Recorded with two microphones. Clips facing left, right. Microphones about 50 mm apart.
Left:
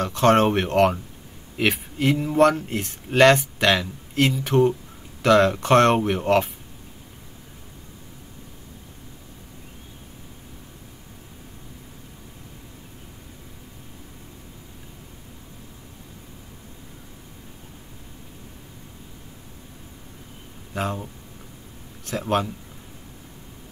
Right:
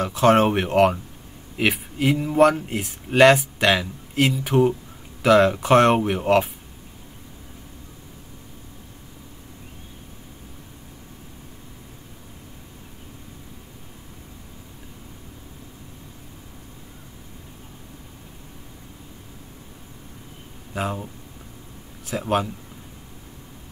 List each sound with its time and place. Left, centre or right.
0.0 s speech: centre
20.7 s speech: centre